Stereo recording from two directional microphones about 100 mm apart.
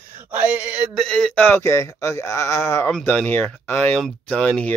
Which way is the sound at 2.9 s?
10° left (ahead or behind).